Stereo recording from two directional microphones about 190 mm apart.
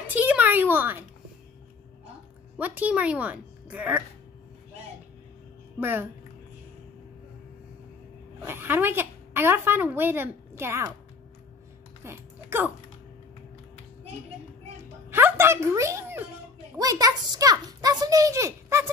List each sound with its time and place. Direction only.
0.1 s a sound: 10° right (ahead or behind)
2.5 s a woman's voice: 10° right (ahead or behind)
5.8 s a child's voice: 10° right (ahead or behind)
8.5 s a woman's voice: 10° right (ahead or behind)
12.0 s typing: 10° right (ahead or behind)
15.0 s music: 10° right (ahead or behind)
16.7 s a child's voice: 20° right (ahead or behind)